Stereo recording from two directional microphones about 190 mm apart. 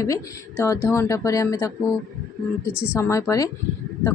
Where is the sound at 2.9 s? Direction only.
15° left (ahead or behind).